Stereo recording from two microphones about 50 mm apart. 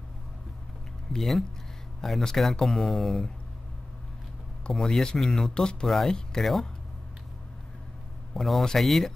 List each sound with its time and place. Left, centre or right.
1.1 s speech: centre
4.6 s speech: centre
5.9 s speech: centre
8.4 s speech: centre